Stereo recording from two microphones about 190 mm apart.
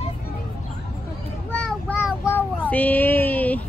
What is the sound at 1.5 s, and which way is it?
Child singing, 10° left (ahead or behind).